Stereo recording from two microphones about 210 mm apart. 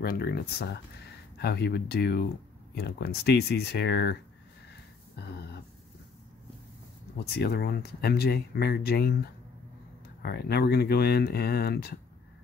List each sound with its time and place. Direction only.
0.0 s speech: 45° left (ahead or behind)
5.1 s a sound: 50° left (ahead or behind)
7.3 s speech: 50° left (ahead or behind)